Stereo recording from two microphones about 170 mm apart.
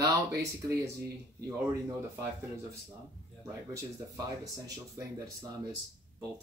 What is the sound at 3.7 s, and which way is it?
Speech, 20° right (ahead or behind).